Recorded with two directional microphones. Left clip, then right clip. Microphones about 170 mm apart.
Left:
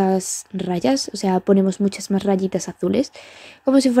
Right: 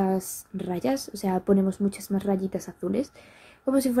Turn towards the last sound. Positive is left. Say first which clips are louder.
# left 8 dB
turn(degrees=35)  # may be behind; listen again after turning